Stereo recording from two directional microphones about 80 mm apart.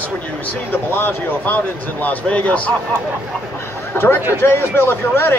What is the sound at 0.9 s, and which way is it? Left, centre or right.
Speech, left.